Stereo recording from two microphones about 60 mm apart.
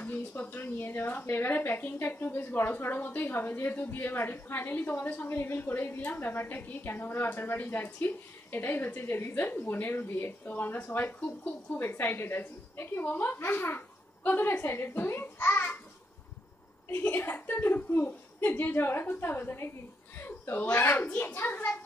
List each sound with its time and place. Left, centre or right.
0.0 s a woman's voice: left
5.3 s a woman's voice: left
16.9 s a woman's voice: left